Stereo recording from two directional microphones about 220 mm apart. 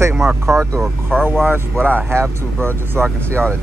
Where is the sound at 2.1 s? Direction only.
10° right (ahead or behind).